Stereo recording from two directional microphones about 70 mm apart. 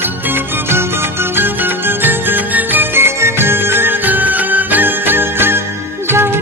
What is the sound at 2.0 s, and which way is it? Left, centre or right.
Music, right.